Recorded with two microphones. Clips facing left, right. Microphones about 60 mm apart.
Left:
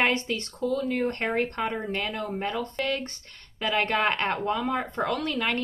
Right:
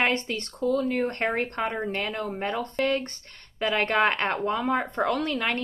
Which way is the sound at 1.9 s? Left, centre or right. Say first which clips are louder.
Right 1 dB; right.